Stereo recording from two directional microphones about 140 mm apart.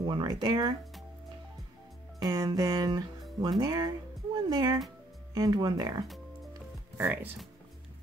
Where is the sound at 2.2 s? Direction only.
25° right (ahead or behind).